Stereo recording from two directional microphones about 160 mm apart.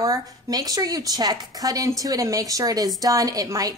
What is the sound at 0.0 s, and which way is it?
A woman's voice, 25° right (ahead or behind).